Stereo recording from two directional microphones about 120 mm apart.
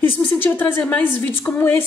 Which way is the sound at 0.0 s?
15° left (ahead or behind).